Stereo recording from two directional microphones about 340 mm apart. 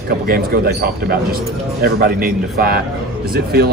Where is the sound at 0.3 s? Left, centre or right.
Right.